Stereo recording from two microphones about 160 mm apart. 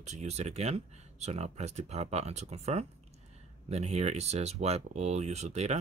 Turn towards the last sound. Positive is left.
turn(degrees=-45)  # may be behind; listen again after turning